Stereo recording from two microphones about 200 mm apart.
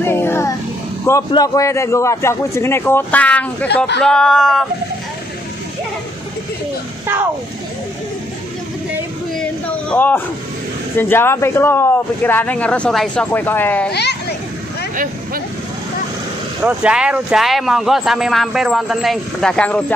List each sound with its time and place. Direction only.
0.0 s child singing: 10° left (ahead or behind)
1.0 s speech: 15° left (ahead or behind)
3.6 s speech: 55° left (ahead or behind)
4.0 s a man's voice: 5° left (ahead or behind)
9.4 s a sound: 5° left (ahead or behind)
11.0 s speech: 10° left (ahead or behind)
16.6 s a man's voice: 5° right (ahead or behind)